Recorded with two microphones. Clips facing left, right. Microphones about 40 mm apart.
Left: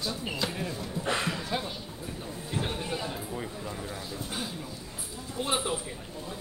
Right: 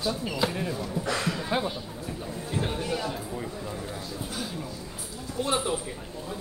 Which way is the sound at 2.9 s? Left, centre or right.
Left.